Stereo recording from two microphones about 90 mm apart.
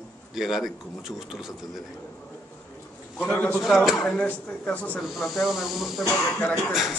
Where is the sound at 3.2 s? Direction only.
15° left (ahead or behind).